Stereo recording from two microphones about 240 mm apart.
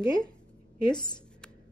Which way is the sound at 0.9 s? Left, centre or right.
Centre.